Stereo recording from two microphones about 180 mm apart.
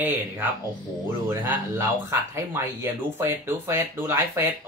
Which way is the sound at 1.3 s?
15° right (ahead or behind).